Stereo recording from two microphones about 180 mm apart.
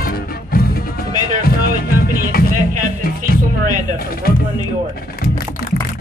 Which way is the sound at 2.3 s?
60° left (ahead or behind).